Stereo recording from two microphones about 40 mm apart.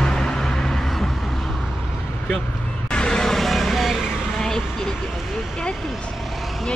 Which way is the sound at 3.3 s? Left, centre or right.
Centre.